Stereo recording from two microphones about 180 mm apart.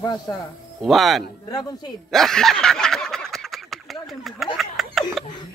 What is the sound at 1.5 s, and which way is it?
Speech, 20° left (ahead or behind).